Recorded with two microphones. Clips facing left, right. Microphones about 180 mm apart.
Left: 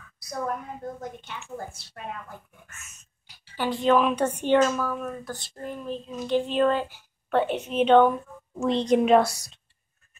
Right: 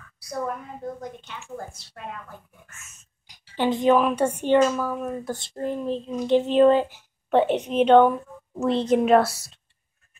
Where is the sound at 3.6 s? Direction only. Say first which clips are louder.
Right 2 dB; 20° right (ahead or behind); by 9.6 s 5° right (ahead or behind).